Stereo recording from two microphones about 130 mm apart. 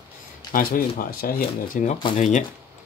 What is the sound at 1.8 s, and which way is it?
Speech, 80° left.